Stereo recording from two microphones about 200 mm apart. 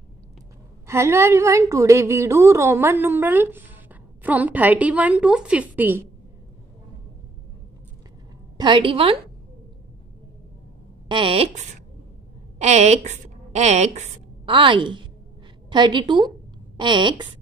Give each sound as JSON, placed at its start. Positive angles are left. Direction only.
{"t": 0.8, "sound": "a woman's voice", "side_deg": -15}
{"t": 8.5, "sound": "a woman's voice", "side_deg": -25}
{"t": 11.1, "sound": "a woman's voice", "side_deg": -25}